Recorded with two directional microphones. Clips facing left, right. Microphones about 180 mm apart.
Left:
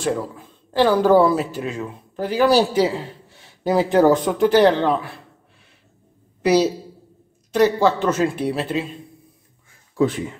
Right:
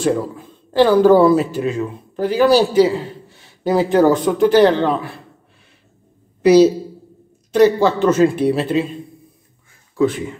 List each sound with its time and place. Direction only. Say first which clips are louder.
0.7 s speech: right 4 dB; 5° left (ahead or behind)
6.4 s a man's voice: right 7 dB; 10° left (ahead or behind)
9.9 s speech: right 2 dB; 35° left (ahead or behind)